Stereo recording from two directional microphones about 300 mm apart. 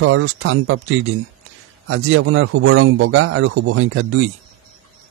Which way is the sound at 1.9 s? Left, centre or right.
Right.